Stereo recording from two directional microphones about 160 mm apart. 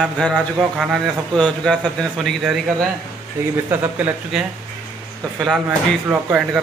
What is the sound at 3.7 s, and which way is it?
Speech, 10° right (ahead or behind).